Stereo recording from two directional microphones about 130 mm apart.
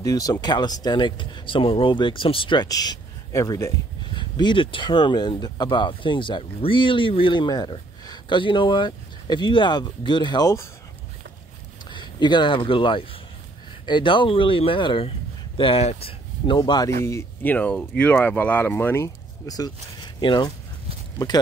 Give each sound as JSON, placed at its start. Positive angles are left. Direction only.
{"t": 0.0, "sound": "speech", "side_deg": 25}
{"t": 4.1, "sound": "speech", "side_deg": 35}
{"t": 11.9, "sound": "speech", "side_deg": 35}
{"t": 16.5, "sound": "speech", "side_deg": 30}
{"t": 17.0, "sound": "speech", "side_deg": 20}